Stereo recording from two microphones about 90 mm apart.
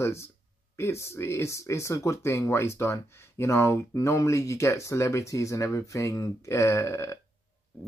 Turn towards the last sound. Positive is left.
turn(degrees=30)  # may be behind; listen again after turning